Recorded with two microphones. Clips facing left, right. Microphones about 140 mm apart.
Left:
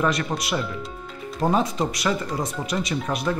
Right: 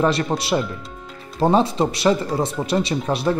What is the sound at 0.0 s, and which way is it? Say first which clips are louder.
Speech: right 4 dB; 30° right (ahead or behind).